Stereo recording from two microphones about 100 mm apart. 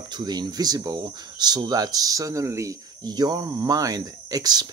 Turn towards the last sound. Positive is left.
turn(degrees=-40)  # may be behind; listen again after turning